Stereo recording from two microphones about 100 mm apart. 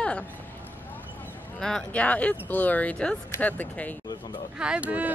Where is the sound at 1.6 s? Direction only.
10° left (ahead or behind).